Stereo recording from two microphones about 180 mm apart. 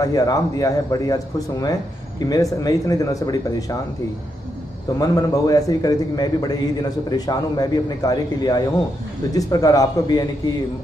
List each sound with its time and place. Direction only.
0.0 s a man's voice: 20° left (ahead or behind)
4.9 s a man's voice: 20° left (ahead or behind)